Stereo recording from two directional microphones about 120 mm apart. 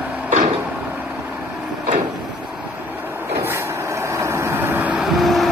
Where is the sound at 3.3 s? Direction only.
20° right (ahead or behind); by 5.5 s centre (ahead or behind).